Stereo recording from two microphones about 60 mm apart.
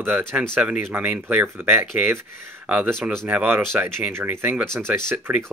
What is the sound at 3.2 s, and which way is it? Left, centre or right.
Speech, right.